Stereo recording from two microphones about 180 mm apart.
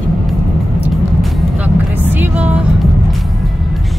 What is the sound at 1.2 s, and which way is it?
Vehicle, centre (ahead or behind).